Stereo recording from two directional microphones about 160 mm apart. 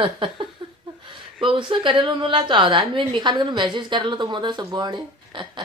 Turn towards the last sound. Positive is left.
turn(degrees=-30)  # may be behind; listen again after turning